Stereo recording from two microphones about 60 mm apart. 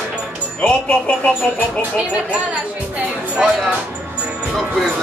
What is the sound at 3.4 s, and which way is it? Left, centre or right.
Speech, centre.